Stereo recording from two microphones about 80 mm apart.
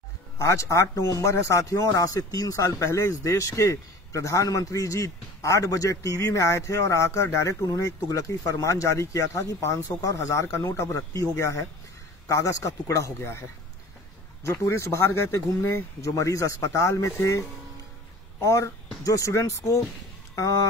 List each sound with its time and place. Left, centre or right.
0.4 s speech: left
14.4 s a man's voice: left